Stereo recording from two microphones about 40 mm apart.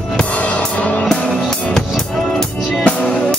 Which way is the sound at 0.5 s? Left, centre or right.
Left.